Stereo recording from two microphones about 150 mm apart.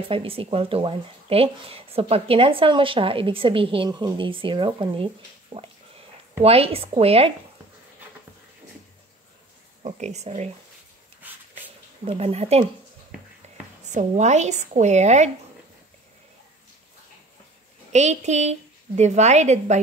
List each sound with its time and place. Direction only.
0.1 s speech: 40° right (ahead or behind)
9.8 s a woman's voice: 50° right (ahead or behind)
11.2 s dog: 10° right (ahead or behind)
12.0 s a woman's voice: 40° right (ahead or behind)
13.8 s a woman's voice: 50° right (ahead or behind)
17.9 s a woman's voice: 50° right (ahead or behind)